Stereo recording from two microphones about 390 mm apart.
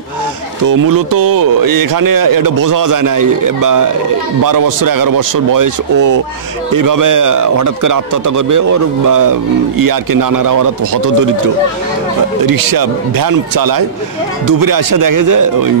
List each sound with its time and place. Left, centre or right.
0.7 s a man's voice: right
12.4 s a man's voice: right